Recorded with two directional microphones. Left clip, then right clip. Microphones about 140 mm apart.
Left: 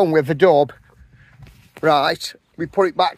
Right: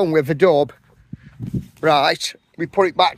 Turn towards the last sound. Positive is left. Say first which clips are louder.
# right 1 dB
turn(degrees=-10)  # may be behind; listen again after turning